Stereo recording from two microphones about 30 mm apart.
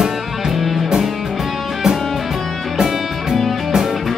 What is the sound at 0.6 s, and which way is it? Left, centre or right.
Music, centre.